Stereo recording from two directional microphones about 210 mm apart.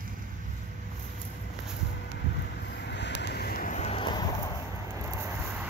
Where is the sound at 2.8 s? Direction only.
55° left (ahead or behind); by 4.5 s 20° left (ahead or behind).